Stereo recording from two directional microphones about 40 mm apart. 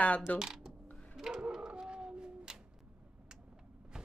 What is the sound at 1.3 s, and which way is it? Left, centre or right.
Bird, centre.